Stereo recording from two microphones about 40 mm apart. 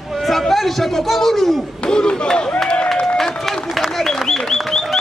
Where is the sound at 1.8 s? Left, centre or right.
Left.